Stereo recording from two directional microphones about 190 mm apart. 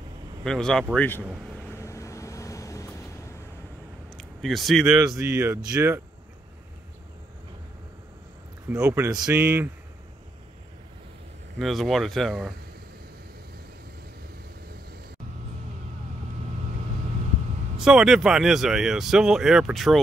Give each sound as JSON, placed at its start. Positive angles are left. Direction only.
{"t": 0.4, "sound": "speech", "side_deg": 5}
{"t": 1.2, "sound": "speech", "side_deg": -5}
{"t": 1.6, "sound": "vehicle", "side_deg": 15}
{"t": 4.2, "sound": "speech", "side_deg": 0}
{"t": 4.9, "sound": "speech", "side_deg": -15}
{"t": 8.6, "sound": "speech", "side_deg": -15}
{"t": 11.5, "sound": "speech", "side_deg": 0}
{"t": 17.7, "sound": "speech", "side_deg": -5}